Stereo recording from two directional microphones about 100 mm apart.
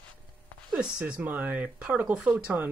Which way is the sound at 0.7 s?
10° right (ahead or behind).